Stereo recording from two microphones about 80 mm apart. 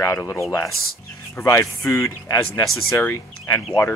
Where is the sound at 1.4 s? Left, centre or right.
Left.